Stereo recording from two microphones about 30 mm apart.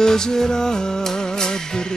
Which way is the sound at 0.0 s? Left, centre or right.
Left.